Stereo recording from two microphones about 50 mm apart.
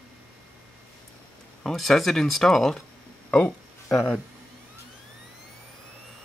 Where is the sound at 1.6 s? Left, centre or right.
Centre.